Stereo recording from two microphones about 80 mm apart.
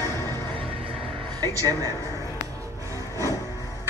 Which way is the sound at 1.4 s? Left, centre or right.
Right.